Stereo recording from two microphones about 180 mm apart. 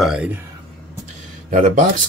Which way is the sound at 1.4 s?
45° right (ahead or behind).